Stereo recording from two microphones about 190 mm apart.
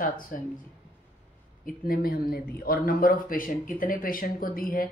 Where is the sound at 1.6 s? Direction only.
50° left (ahead or behind).